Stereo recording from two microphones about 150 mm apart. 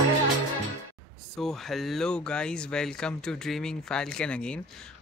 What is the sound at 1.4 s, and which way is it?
Speech, centre (ahead or behind).